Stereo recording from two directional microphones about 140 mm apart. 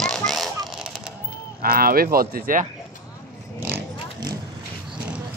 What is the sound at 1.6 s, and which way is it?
Speech, 90° right.